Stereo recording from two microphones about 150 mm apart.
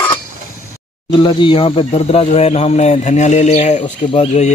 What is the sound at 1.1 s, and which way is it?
Speech, 35° left (ahead or behind).